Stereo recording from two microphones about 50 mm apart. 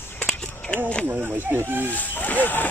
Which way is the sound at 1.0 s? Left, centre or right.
Right.